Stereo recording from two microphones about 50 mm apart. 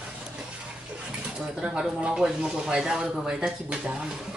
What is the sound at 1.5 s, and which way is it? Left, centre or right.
Speech, centre.